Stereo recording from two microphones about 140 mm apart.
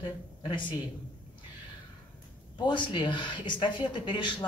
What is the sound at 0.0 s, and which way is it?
Speech, 35° left (ahead or behind).